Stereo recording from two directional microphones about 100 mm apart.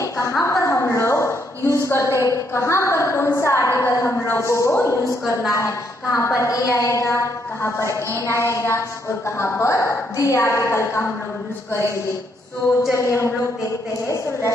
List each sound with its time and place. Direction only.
0.0 s a sound: 30° left (ahead or behind)
6.1 s a woman's voice: 30° left (ahead or behind)
12.9 s a woman's voice: 30° left (ahead or behind)